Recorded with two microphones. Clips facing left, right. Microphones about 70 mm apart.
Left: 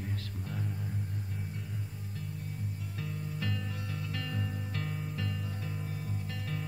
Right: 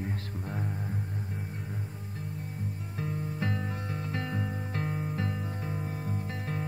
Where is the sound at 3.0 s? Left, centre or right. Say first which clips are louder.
Right 5 dB; right.